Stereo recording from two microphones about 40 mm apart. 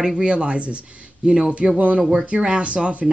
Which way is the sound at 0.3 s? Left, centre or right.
Right.